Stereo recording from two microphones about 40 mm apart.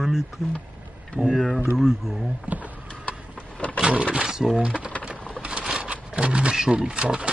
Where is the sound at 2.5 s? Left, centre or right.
Right.